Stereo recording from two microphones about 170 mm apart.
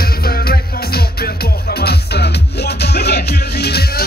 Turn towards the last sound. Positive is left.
turn(degrees=75)  # may be behind; listen again after turning